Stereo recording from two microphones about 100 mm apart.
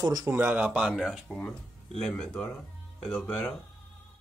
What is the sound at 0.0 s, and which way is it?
Speech, 40° right (ahead or behind).